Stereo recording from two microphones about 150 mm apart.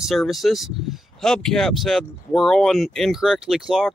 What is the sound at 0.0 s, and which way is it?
Speech, centre (ahead or behind).